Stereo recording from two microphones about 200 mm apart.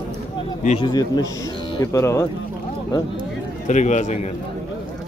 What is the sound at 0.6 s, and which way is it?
A man's voice, 25° left (ahead or behind).